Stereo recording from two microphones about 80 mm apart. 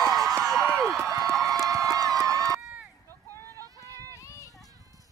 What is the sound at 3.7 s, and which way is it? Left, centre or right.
Run, left.